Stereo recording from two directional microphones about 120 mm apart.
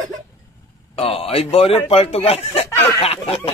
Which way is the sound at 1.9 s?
55° left (ahead or behind).